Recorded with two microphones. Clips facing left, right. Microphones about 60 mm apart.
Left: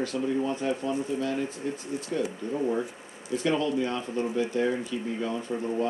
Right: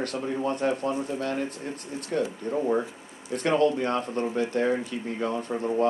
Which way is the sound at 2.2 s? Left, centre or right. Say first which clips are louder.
Right 3 dB; right.